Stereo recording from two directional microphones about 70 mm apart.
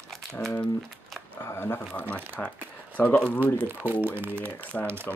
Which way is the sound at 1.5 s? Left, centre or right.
Left.